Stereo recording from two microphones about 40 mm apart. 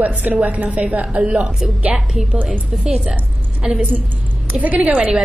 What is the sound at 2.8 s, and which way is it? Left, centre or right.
Speech, centre.